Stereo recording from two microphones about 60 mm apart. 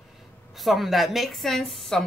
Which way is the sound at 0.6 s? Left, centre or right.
Centre.